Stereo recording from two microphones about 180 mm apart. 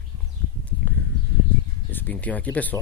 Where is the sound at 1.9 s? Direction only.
10° left (ahead or behind).